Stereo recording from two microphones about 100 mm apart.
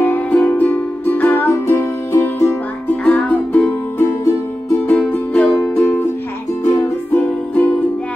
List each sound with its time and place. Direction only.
0.0 s music: 15° left (ahead or behind)
3.0 s music: 10° left (ahead or behind)
4.0 s music: 30° left (ahead or behind)
4.8 s music: 15° left (ahead or behind)
7.2 s music: 15° left (ahead or behind)